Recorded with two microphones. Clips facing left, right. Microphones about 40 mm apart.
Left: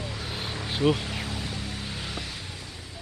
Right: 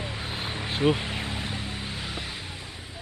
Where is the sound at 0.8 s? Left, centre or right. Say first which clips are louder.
Even; right.